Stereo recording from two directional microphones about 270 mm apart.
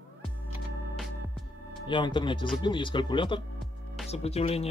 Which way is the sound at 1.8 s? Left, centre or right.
Centre.